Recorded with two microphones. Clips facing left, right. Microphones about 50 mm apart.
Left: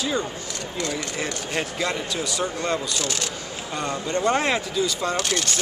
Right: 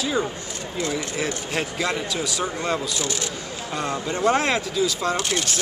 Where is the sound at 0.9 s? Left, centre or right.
Centre.